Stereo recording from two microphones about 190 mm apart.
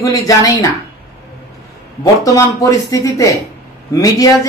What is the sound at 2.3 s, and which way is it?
A woman's voice, 15° left (ahead or behind).